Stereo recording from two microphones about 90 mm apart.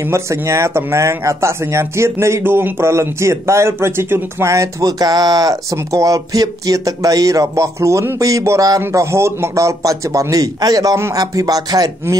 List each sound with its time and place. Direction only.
0.0 s speech: 30° right (ahead or behind)